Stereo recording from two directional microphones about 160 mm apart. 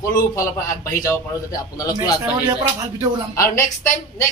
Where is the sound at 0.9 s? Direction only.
15° left (ahead or behind).